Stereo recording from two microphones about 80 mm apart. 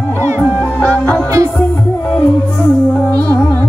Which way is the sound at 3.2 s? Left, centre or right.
Left.